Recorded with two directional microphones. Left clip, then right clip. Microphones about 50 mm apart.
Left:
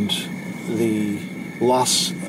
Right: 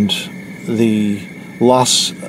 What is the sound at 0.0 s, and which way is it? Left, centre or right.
Speech, right.